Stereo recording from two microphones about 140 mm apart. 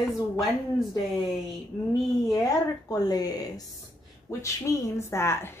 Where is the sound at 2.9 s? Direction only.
25° left (ahead or behind).